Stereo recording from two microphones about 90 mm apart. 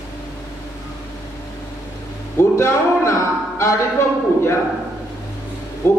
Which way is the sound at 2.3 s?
30° left (ahead or behind).